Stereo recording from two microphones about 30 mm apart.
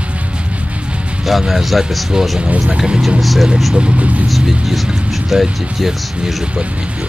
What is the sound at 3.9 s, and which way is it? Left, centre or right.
Speech, right.